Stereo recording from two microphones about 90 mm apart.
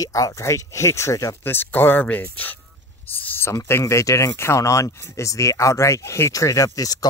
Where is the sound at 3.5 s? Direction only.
30° left (ahead or behind).